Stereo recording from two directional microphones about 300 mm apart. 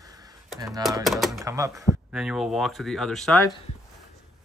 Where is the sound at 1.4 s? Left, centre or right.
Centre.